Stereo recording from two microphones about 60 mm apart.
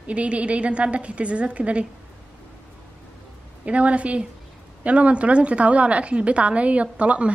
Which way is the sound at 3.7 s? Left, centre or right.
Right.